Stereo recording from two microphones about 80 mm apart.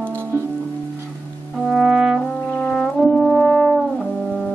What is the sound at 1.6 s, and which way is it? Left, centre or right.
Brass instrument, centre.